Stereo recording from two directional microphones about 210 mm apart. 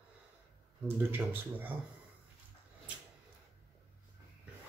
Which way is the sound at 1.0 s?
10° right (ahead or behind).